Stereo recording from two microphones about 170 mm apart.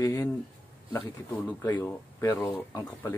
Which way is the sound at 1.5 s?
10° left (ahead or behind).